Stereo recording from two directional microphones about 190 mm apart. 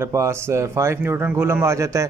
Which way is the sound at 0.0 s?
15° right (ahead or behind).